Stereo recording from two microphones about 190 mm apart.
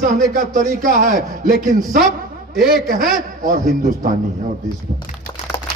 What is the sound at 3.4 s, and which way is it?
Speech, 40° right (ahead or behind).